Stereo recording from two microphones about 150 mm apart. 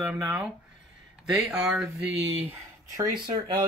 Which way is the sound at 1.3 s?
5° right (ahead or behind).